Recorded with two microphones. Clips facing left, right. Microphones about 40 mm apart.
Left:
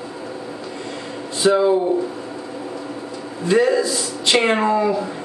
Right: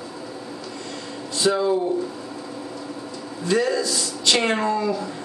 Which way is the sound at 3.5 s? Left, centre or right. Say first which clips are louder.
Left 5 dB; left.